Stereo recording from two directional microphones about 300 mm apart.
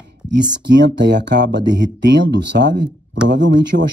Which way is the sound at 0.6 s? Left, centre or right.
Right.